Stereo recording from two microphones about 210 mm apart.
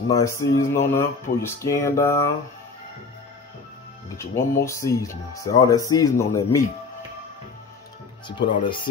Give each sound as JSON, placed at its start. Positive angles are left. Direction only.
{"t": 0.1, "sound": "speech", "side_deg": 15}
{"t": 4.2, "sound": "speech", "side_deg": 15}
{"t": 8.3, "sound": "speech", "side_deg": 25}